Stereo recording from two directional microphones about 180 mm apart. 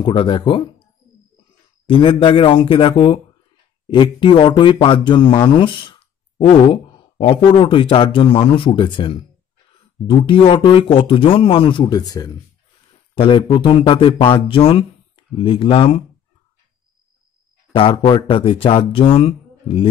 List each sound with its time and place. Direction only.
0.0 s speech: 30° left (ahead or behind)
1.9 s speech: 30° left (ahead or behind)
17.7 s speech: 30° left (ahead or behind)